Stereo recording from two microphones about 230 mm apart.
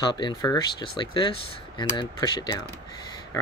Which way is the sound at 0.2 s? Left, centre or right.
Centre.